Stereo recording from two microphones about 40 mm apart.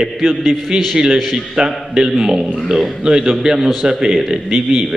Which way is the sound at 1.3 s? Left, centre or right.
Centre.